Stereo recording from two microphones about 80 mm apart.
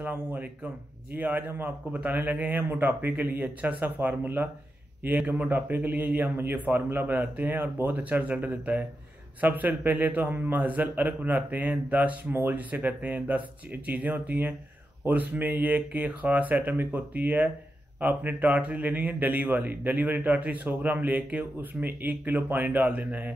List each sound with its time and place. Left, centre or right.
0.0 s a man's voice: right